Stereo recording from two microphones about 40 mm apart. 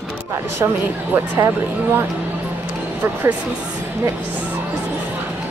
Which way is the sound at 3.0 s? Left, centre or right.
Right.